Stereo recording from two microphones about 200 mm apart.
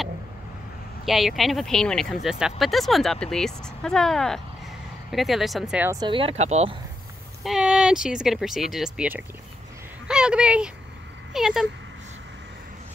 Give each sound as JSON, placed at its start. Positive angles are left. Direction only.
{"t": 1.0, "sound": "speech", "side_deg": 0}
{"t": 5.9, "sound": "speech", "side_deg": -25}
{"t": 7.4, "sound": "speech", "side_deg": -5}